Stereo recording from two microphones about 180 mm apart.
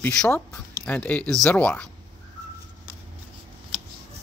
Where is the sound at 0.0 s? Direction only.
10° left (ahead or behind).